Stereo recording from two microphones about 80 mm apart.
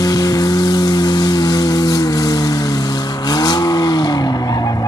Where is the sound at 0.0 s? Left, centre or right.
Left.